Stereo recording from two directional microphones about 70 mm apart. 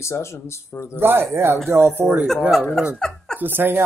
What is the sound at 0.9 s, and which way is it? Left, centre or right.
Speech, right.